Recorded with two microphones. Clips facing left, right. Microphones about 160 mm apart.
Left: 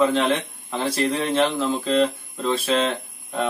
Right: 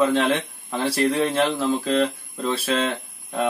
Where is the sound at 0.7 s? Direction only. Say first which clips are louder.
Right 1 dB; 25° left (ahead or behind).